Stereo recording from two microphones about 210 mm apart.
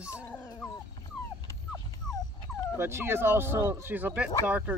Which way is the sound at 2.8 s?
10° right (ahead or behind).